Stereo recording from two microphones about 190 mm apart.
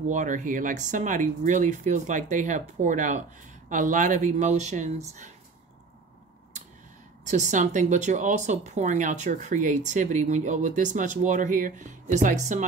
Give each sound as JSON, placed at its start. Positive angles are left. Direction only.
{"t": 0.1, "sound": "speech", "side_deg": -40}
{"t": 7.2, "sound": "speech", "side_deg": -40}